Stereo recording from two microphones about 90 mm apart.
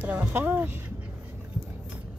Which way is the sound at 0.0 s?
15° right (ahead or behind).